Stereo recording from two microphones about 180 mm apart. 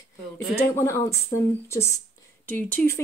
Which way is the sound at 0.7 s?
15° left (ahead or behind).